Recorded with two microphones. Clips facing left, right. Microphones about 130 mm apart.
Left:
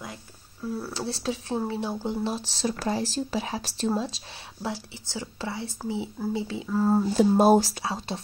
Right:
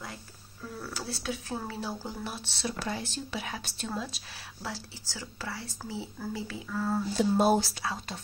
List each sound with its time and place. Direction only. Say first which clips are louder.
0.7 s speech: left 3 dB; 30° left (ahead or behind)
7.2 s speech: left 5 dB; 45° left (ahead or behind)
7.8 s speech: left 4 dB; 30° left (ahead or behind)